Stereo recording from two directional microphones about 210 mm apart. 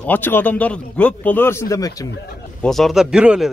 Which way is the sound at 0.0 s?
10° left (ahead or behind).